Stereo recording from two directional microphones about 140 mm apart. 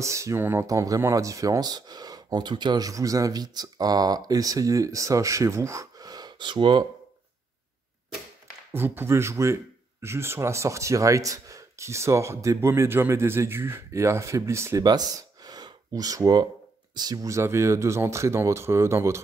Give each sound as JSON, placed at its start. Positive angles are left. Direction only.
{"t": 0.0, "sound": "speech", "side_deg": -20}
{"t": 8.7, "sound": "speech", "side_deg": -15}